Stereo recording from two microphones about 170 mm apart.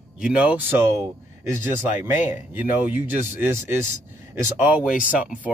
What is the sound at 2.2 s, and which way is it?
A man's voice, 10° right (ahead or behind).